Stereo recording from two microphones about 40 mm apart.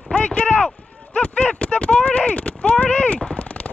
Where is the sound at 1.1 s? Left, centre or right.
Left.